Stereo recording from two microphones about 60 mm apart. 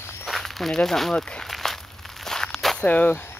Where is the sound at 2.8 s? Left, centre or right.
Left.